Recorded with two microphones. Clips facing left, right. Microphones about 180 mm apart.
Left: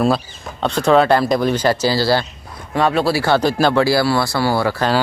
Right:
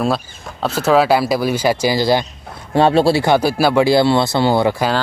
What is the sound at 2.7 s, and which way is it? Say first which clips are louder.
Speech: right 4 dB; 30° right (ahead or behind).